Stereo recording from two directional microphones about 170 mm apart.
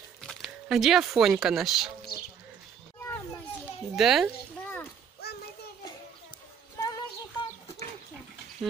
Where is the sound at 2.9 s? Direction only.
15° left (ahead or behind).